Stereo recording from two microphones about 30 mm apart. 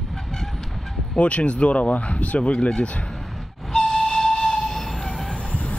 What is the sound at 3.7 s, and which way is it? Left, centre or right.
Train, centre.